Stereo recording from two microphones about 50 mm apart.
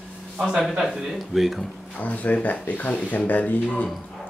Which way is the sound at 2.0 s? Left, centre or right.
Left.